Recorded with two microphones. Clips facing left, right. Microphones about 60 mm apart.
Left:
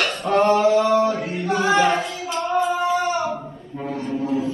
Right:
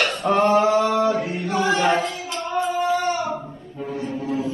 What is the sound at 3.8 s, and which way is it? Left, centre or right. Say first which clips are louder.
Foghorn: even; left.